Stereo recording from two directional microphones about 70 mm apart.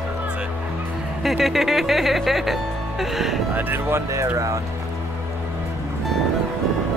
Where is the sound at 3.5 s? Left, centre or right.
Right.